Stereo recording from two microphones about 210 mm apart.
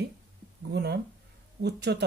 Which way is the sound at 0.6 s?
50° right (ahead or behind).